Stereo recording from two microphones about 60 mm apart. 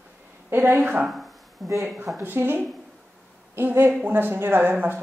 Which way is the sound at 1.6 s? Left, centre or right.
Centre.